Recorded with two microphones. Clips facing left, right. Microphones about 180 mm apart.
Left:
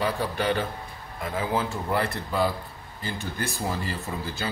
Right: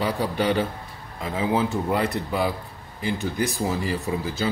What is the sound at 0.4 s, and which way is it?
Speech, 15° right (ahead or behind).